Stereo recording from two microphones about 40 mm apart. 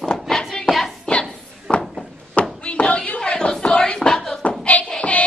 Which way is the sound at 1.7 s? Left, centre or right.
Centre.